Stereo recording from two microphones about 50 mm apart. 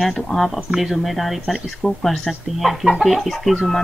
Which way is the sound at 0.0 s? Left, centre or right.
Centre.